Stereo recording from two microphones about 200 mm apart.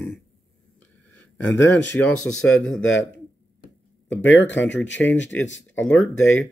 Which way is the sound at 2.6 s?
70° left (ahead or behind).